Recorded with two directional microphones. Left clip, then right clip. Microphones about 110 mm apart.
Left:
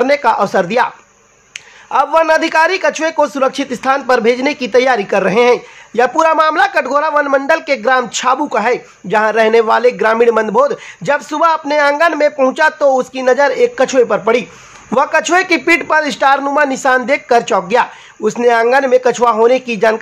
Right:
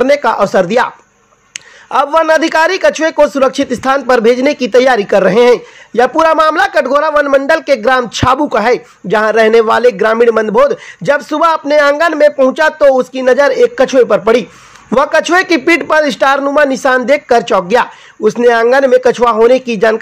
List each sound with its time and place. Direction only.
0.0 s a man's voice: 30° right (ahead or behind)
1.9 s a man's voice: 30° right (ahead or behind)